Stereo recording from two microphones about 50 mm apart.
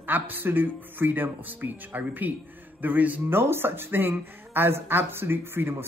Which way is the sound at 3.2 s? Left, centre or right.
Right.